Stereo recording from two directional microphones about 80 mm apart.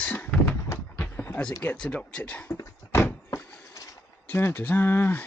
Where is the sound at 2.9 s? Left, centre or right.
Left.